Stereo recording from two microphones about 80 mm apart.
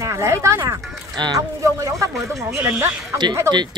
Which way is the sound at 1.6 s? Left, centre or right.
Right.